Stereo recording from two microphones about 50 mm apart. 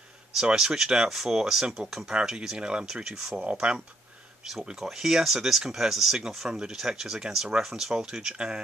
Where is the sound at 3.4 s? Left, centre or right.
Right.